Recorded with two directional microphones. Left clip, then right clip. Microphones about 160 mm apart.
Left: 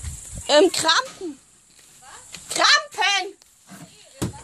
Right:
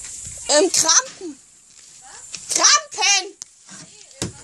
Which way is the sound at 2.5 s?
25° right (ahead or behind).